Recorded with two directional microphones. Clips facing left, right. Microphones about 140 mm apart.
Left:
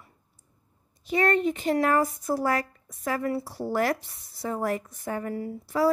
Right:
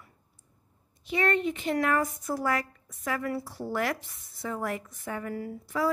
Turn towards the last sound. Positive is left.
turn(degrees=30)  # may be behind; listen again after turning